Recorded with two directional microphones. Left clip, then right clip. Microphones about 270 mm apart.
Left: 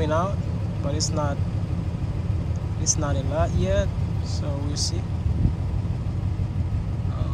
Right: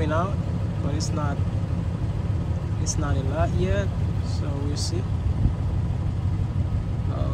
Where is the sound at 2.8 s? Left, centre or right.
Centre.